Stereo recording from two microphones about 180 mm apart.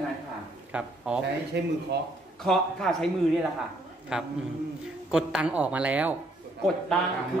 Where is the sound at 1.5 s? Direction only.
70° right (ahead or behind).